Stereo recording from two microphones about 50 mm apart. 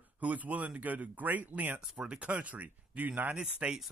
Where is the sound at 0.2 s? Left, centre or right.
Right.